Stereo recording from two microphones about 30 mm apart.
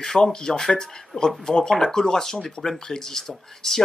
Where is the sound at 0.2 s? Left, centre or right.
Left.